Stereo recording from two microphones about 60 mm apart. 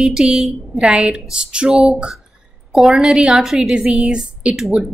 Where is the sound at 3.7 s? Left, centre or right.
Centre.